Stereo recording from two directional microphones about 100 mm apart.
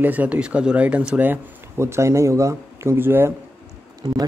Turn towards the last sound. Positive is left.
turn(degrees=-45)  # may be behind; listen again after turning